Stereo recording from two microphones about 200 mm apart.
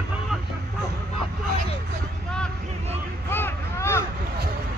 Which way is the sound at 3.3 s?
10° left (ahead or behind).